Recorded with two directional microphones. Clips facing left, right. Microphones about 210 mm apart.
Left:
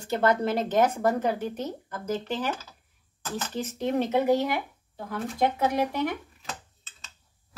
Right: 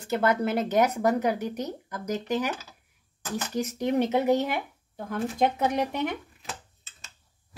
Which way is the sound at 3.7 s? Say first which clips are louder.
Right 1 dB; 15° right (ahead or behind).